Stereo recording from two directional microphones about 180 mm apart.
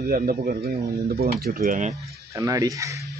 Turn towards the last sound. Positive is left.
turn(degrees=-15)  # may be behind; listen again after turning